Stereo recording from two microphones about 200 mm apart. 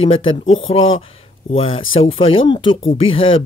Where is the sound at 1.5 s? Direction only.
80° left.